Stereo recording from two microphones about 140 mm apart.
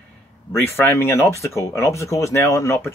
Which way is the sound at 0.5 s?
15° left (ahead or behind).